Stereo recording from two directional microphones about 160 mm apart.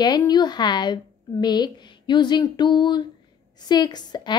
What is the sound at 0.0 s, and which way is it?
A woman's voice, 25° left (ahead or behind).